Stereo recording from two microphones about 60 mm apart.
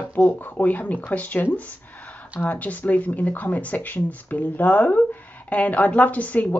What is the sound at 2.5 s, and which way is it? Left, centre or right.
A woman's voice, left.